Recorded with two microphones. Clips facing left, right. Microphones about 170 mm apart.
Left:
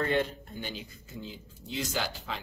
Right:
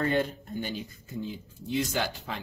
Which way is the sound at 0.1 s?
40° right (ahead or behind).